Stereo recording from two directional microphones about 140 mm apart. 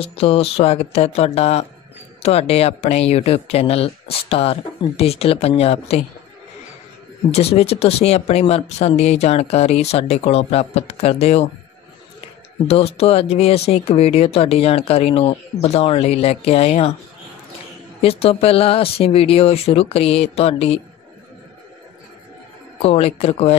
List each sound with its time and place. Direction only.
0.0 s speech: 40° left (ahead or behind)
7.2 s speech: 45° left (ahead or behind)
12.6 s speech: 45° left (ahead or behind)
18.0 s speech: 45° left (ahead or behind)
22.8 s speech: 45° left (ahead or behind)